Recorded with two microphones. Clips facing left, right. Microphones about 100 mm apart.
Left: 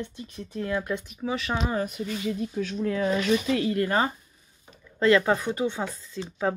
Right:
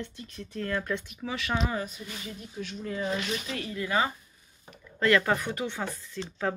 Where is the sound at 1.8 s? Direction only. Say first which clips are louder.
Left 7 dB; 65° left (ahead or behind).